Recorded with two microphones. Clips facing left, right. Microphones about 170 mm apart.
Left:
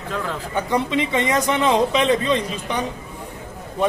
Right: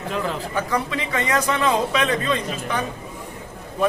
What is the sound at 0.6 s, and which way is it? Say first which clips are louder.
A man's voice: left 5 dB; 25° left (ahead or behind).